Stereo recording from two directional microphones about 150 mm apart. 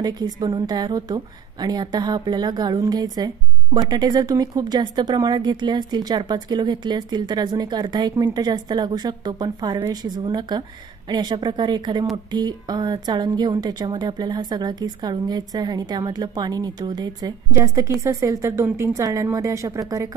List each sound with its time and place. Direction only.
0.0 s a woman's voice: 25° right (ahead or behind)